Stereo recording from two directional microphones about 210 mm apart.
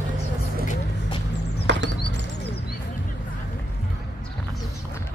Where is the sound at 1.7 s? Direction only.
55° right (ahead or behind).